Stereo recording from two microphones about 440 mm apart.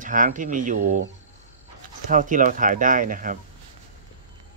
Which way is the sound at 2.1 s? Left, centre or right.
Centre.